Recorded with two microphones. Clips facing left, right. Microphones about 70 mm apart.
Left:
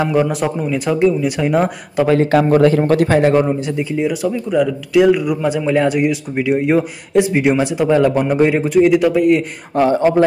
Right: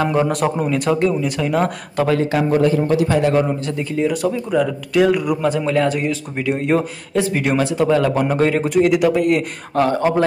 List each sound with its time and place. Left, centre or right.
0.1 s speech: centre
1.2 s speech: centre
2.3 s a man's voice: left
2.9 s a man's voice: left
3.5 s speech: centre
5.7 s a man's voice: centre
8.6 s speech: centre
9.8 s speech: left